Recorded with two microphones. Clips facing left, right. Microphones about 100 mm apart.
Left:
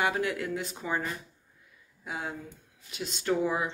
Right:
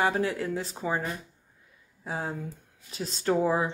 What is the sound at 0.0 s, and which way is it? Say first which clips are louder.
Speech: right 2 dB; 35° right (ahead or behind).